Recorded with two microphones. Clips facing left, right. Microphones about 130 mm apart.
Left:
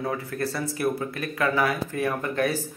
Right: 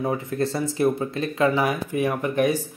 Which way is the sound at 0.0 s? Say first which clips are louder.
Right 4 dB; 25° right (ahead or behind).